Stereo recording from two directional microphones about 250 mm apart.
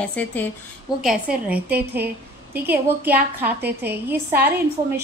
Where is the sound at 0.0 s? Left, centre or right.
Centre.